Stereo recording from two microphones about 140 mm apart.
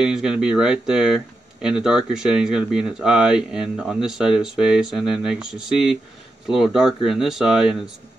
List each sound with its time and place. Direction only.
0.0 s speech: 5° right (ahead or behind)